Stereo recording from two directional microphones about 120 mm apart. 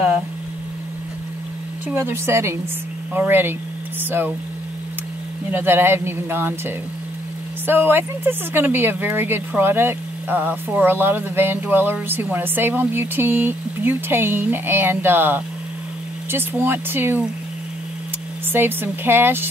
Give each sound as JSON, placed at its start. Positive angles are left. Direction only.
{"t": 1.9, "sound": "speech", "side_deg": -20}
{"t": 5.5, "sound": "speech", "side_deg": -15}
{"t": 7.6, "sound": "speech", "side_deg": -15}
{"t": 18.5, "sound": "speech", "side_deg": -20}